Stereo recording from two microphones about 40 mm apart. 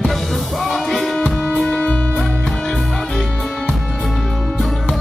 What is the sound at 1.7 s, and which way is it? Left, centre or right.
Music, left.